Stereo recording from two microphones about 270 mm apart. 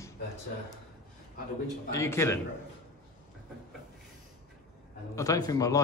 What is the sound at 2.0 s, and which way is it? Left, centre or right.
Speech, centre.